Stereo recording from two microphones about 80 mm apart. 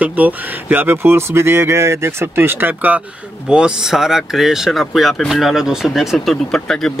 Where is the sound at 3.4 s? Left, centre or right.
Centre.